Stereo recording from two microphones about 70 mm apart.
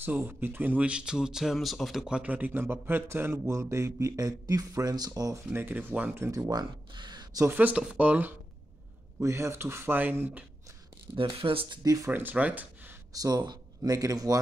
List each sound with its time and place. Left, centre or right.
0.3 s speech: right; by 2.0 s centre
2.0 s speech: centre
2.3 s speech: right
5.5 s speech: right
6.5 s speech: right
7.4 s speech: right
9.2 s speech: right
11.2 s speech: right
12.1 s speech: right
13.1 s speech: right